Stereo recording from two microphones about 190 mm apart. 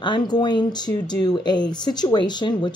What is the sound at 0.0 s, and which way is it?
Speech, 25° left (ahead or behind).